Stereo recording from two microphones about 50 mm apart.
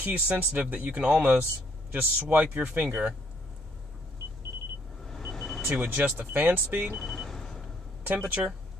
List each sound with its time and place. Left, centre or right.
0.0 s speech: right
5.0 s vehicle: centre
5.8 s speech: right
7.0 s vehicle: centre
8.1 s speech: right